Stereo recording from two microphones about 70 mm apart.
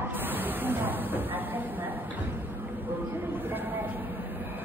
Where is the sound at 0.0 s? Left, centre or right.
Right.